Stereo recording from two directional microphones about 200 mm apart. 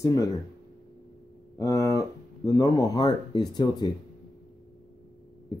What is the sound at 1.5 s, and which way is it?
Speech, 15° left (ahead or behind).